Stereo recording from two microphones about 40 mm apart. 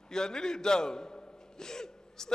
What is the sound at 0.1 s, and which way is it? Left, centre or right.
A man's voice, centre.